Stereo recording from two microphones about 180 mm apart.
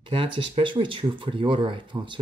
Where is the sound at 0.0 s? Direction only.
30° right (ahead or behind).